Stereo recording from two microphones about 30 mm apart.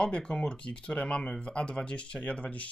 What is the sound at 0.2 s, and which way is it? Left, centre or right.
Speech, left.